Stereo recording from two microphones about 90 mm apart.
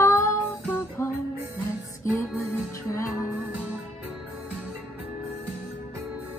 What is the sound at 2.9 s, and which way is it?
Music, 35° left (ahead or behind).